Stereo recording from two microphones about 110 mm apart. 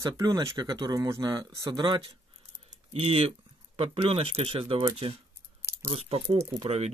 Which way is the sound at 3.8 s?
60° right (ahead or behind).